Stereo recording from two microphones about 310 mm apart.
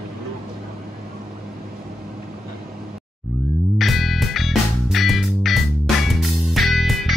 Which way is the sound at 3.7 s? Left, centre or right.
Centre.